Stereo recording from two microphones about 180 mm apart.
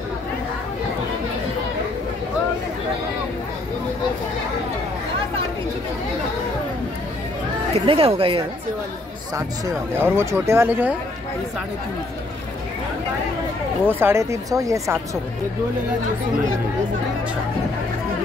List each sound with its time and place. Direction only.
7.8 s speech: 30° right (ahead or behind)
9.9 s speech: 15° right (ahead or behind)
13.8 s speech: 10° right (ahead or behind)